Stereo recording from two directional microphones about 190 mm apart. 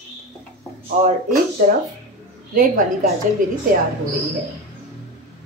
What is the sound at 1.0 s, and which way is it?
Speech, 40° right (ahead or behind).